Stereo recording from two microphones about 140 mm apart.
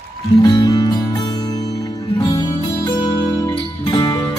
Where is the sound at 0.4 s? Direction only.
25° left (ahead or behind).